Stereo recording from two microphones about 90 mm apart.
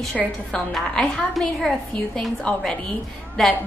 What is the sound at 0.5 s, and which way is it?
A woman's voice, 10° left (ahead or behind).